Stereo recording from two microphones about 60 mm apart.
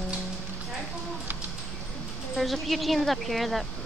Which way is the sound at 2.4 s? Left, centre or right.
Centre.